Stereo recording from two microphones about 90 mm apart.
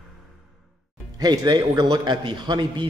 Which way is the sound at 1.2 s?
50° right (ahead or behind).